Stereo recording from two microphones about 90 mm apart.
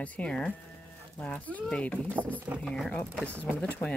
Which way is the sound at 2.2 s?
20° right (ahead or behind).